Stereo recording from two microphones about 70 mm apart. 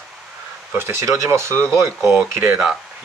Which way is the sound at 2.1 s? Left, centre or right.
Right.